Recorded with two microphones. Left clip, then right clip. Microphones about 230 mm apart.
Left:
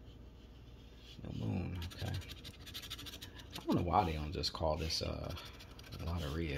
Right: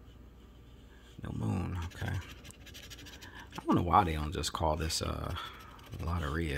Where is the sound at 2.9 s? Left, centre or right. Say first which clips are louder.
Left 1 dB; right.